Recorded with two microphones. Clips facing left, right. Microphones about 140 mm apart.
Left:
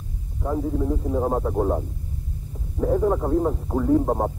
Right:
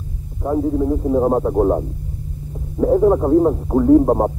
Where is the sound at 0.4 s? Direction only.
25° right (ahead or behind).